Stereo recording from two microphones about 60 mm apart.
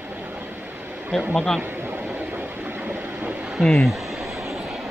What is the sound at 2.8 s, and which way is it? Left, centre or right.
Vehicle, right.